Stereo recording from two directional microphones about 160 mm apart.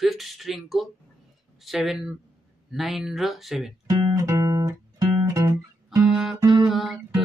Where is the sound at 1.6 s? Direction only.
Centre (ahead or behind).